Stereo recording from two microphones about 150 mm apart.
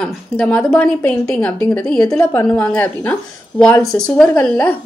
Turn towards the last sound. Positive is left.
turn(degrees=10)  # may be behind; listen again after turning